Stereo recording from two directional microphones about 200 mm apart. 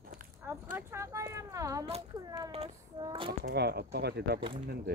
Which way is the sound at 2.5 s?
30° right (ahead or behind).